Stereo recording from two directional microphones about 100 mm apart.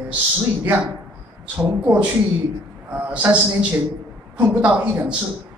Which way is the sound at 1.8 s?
20° right (ahead or behind).